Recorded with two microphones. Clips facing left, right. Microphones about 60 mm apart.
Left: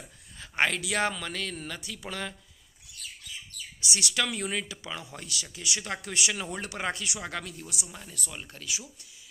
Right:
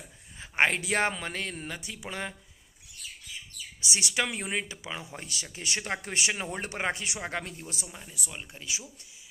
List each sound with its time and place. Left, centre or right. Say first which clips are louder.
0.4 s speech: right 2 dB; right
3.9 s speech: even; right
7.9 s speech: even; centre; by 8.9 s right